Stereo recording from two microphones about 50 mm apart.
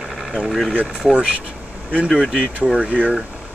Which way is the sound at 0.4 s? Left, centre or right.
Centre.